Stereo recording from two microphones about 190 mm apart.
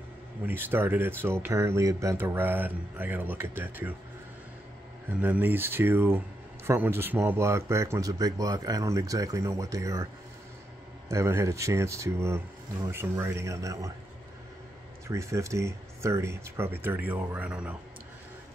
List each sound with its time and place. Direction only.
0.5 s speech: 10° right (ahead or behind)
5.2 s speech: 10° right (ahead or behind)
11.1 s speech: 15° right (ahead or behind)
15.0 s speech: 15° right (ahead or behind)